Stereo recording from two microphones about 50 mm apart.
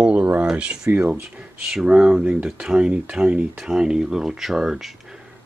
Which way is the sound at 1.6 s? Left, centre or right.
Centre.